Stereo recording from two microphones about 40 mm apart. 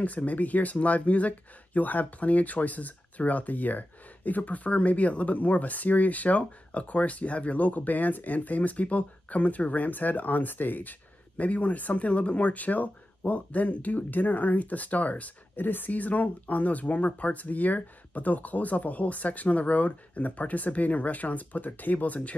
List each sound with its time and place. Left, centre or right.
0.0 s speech: left